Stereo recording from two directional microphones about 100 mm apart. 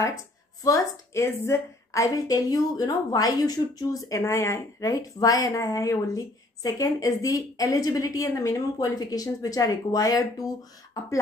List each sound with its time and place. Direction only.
0.7 s speech: 30° left (ahead or behind)
4.1 s speech: 30° left (ahead or behind)